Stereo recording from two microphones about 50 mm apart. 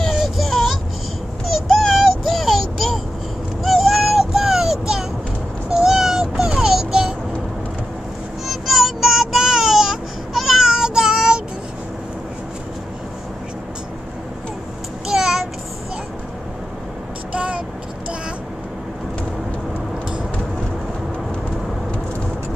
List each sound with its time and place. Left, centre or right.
0.1 s child singing: centre
1.9 s synthetic singing: centre
5.7 s a sound: centre
8.5 s child singing: centre
15.0 s a sound: centre
17.3 s vehicle: right